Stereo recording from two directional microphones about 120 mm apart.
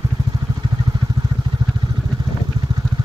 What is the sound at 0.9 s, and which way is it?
Vehicle, 35° right (ahead or behind).